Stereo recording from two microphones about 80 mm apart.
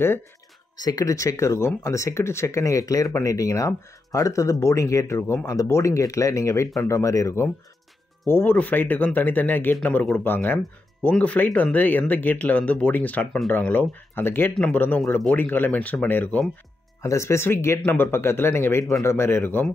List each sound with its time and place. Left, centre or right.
0.7 s speech: left
8.3 s speech: left
17.0 s speech: left